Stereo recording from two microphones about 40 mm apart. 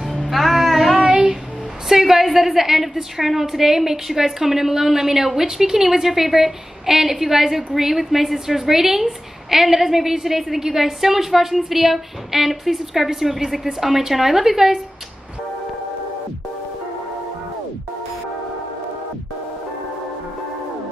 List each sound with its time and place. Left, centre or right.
0.3 s child singing: centre
1.1 s a sound: centre
1.9 s a woman's voice: centre